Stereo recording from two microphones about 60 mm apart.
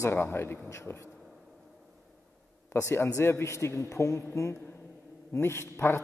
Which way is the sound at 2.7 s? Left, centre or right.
Left.